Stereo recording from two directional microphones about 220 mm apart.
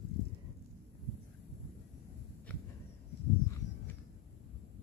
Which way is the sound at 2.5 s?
5° left (ahead or behind).